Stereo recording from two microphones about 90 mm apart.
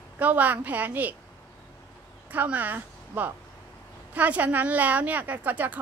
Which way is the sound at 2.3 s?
20° right (ahead or behind).